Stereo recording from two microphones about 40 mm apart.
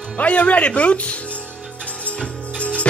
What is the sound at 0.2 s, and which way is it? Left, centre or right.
Speech, left.